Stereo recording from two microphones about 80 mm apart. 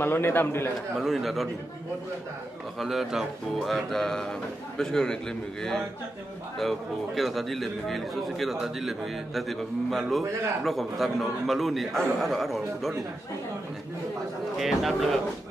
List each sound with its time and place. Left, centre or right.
0.0 s a man's voice: left
1.0 s a man's voice: centre
2.8 s a man's voice: centre
7.2 s a man's voice: centre
14.6 s a man's voice: centre